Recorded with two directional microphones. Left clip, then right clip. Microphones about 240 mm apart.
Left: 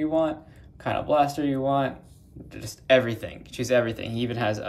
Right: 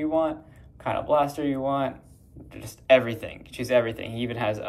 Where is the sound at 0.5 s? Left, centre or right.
Centre.